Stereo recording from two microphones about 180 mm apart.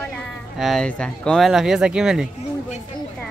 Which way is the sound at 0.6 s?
5° left (ahead or behind).